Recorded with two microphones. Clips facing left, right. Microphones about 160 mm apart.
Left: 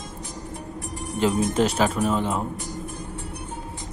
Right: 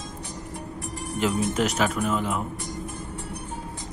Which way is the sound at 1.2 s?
30° left (ahead or behind).